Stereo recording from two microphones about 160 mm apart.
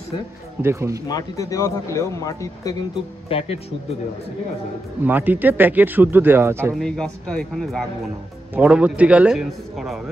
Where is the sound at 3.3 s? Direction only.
40° left (ahead or behind).